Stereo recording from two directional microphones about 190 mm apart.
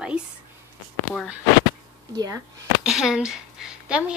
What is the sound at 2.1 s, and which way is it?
Speech, 20° right (ahead or behind).